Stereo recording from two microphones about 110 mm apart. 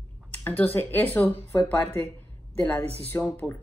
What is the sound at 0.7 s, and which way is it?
A woman's voice, 20° left (ahead or behind).